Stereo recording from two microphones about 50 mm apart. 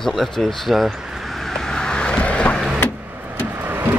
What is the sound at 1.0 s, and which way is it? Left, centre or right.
Vehicle, centre.